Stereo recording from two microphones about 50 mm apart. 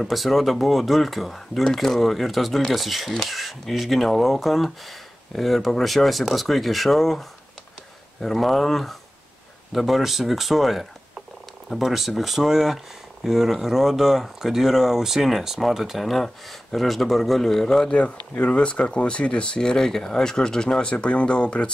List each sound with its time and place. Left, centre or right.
0.0 s speech: centre
17.9 s speech: left